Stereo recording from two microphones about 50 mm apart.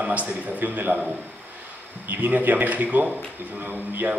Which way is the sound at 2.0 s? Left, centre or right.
Right.